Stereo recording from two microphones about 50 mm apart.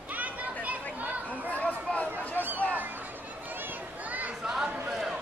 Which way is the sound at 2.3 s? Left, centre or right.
Right.